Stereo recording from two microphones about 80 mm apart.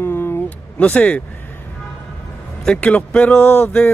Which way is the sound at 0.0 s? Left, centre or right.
Left.